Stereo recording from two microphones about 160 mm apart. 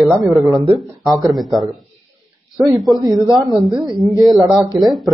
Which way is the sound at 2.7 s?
Centre (ahead or behind).